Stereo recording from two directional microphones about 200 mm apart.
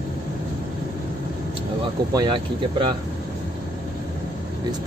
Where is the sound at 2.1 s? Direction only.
25° right (ahead or behind).